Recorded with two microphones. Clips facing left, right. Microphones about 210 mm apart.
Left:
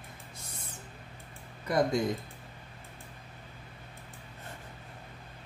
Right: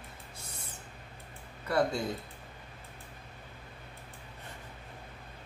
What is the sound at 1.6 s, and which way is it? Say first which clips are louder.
Speech: left 2 dB; 15° left (ahead or behind).